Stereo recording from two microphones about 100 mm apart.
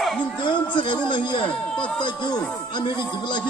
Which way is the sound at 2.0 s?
45° left (ahead or behind).